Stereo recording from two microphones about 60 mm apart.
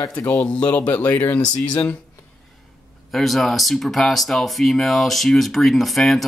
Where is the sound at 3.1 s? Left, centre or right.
Centre.